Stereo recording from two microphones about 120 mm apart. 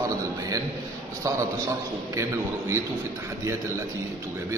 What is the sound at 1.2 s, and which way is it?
A man's voice, 25° right (ahead or behind).